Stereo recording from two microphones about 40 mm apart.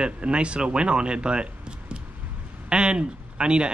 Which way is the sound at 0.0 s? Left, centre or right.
Right.